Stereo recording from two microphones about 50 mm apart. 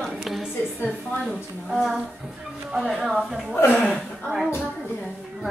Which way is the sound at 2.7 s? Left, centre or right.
Centre.